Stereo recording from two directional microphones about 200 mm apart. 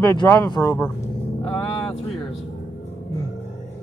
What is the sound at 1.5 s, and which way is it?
Vehicle, 25° left (ahead or behind).